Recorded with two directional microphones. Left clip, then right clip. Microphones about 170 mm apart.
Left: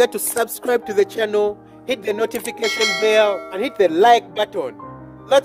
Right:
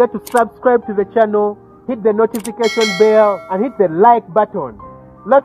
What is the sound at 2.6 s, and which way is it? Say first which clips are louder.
Speech: right 6 dB; centre (ahead or behind).